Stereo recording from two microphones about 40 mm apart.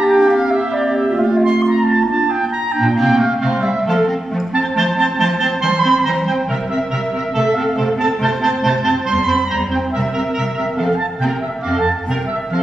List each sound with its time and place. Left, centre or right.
0.0 s music: centre
1.9 s clarinet: centre
2.8 s clarinet: centre
4.6 s clarinet: centre
5.7 s music: centre
8.0 s music: centre